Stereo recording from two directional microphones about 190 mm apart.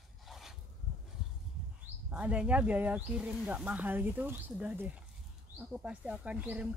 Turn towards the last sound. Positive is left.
turn(degrees=-5)  # may be behind; listen again after turning